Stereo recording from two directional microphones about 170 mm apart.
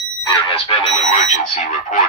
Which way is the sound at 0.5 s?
35° left (ahead or behind).